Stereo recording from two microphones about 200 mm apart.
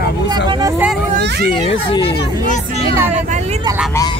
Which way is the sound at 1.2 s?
55° right (ahead or behind).